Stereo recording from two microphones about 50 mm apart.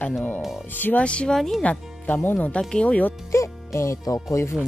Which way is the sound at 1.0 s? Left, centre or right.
Left.